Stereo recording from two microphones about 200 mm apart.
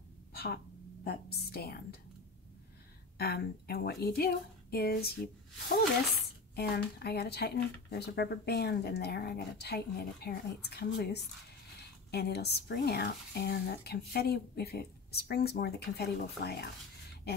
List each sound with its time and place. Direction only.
0.3 s a sound: 50° left (ahead or behind)
1.0 s speech: 50° left (ahead or behind)
3.2 s speech: 50° left (ahead or behind)
6.5 s speech: 50° left (ahead or behind)